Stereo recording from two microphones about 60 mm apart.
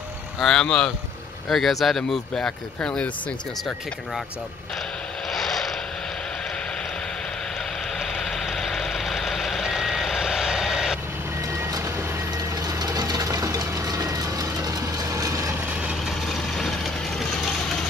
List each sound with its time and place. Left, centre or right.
0.4 s speech: centre
5.3 s vehicle: centre
8.0 s vehicle: centre
12.6 s a sound: right
15.7 s vehicle: centre
16.3 s vehicle: centre